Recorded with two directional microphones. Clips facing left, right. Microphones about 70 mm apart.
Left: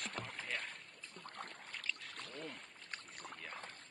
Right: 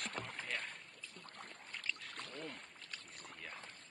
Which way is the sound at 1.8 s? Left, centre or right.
Centre.